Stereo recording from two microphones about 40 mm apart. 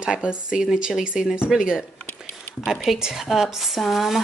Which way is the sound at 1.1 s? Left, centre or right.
Centre.